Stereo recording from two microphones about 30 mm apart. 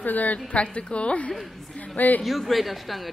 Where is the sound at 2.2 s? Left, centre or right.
Centre.